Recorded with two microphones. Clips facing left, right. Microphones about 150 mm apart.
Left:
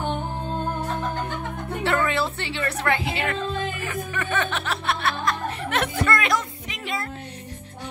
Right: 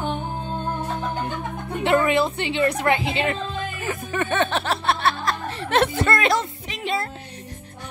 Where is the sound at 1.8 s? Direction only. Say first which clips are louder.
Right 5 dB; 20° right (ahead or behind).